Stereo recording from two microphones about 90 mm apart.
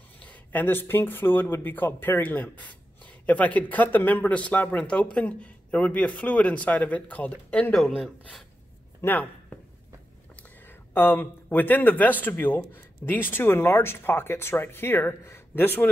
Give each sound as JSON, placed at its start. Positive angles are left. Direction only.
{"t": 0.2, "sound": "speech", "side_deg": 20}
{"t": 8.0, "sound": "speech", "side_deg": 0}
{"t": 9.0, "sound": "speech", "side_deg": 20}
{"t": 10.9, "sound": "speech", "side_deg": 20}